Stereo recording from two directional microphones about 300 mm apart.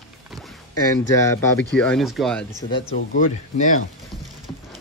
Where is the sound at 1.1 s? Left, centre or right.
Centre.